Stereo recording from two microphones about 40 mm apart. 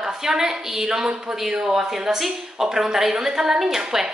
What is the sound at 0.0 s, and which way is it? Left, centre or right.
A woman's voice, centre.